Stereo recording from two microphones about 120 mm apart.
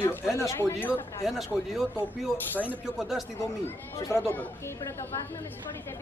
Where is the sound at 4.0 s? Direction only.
25° left (ahead or behind).